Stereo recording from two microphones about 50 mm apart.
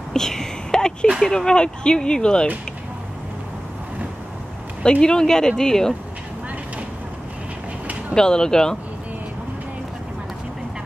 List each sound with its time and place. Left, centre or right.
0.1 s a sound: centre
1.2 s speech: centre
5.0 s speech: centre
8.1 s speech: centre